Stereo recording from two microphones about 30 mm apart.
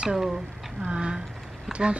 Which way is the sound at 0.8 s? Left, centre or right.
Right.